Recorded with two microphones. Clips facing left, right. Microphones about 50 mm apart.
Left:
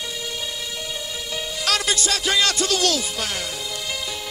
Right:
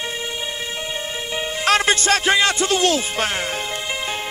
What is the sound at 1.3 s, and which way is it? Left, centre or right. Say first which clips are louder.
Music: right 6 dB; right.